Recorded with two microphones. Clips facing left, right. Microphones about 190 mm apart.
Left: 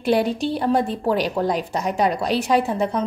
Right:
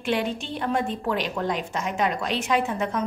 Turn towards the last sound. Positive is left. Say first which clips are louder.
# left 5 dB
turn(degrees=35)  # may be behind; listen again after turning